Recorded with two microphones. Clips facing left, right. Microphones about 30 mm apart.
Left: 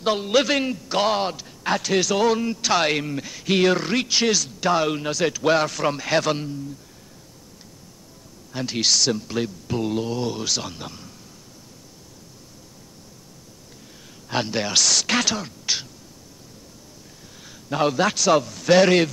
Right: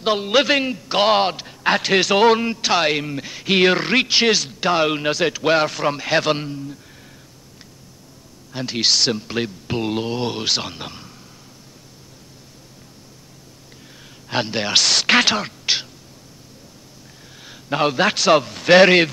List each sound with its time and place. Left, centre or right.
0.0 s a man's voice: right
2.7 s speech: centre; by 6.8 s right
8.5 s speech: centre
8.9 s speech: right
14.2 s speech: right
15.6 s throat clearing: right
17.4 s a man's voice: right